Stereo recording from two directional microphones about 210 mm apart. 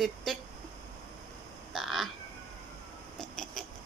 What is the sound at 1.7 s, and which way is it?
Crow, centre (ahead or behind).